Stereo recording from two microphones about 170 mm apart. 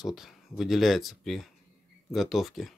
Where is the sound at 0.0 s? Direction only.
Centre (ahead or behind).